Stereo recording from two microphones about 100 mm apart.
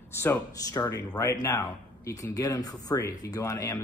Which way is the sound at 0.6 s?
35° left (ahead or behind).